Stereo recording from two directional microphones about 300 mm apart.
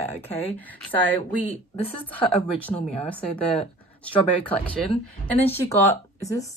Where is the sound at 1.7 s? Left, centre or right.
Centre.